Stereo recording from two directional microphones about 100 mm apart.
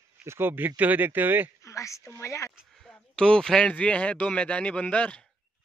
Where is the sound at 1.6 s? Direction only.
30° left (ahead or behind).